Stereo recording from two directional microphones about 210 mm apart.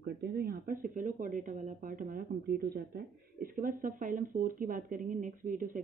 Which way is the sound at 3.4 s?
40° right (ahead or behind).